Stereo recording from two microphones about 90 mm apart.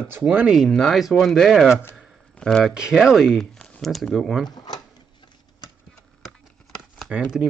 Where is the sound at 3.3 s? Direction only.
10° left (ahead or behind).